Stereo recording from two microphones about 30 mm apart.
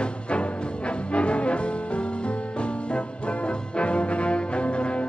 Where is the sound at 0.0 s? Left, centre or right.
Left.